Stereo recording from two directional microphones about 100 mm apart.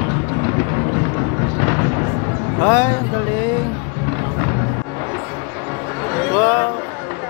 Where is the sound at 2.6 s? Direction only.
30° left (ahead or behind).